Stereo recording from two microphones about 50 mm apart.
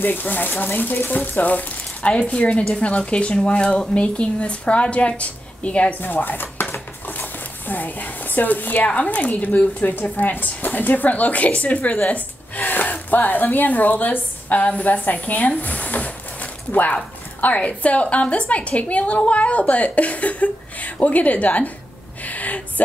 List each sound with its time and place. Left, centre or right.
0.0 s a woman's voice: left
5.9 s a woman's voice: left
22.2 s a sound: left